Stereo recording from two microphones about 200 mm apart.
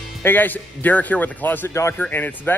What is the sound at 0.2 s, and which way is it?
Speech, 10° left (ahead or behind).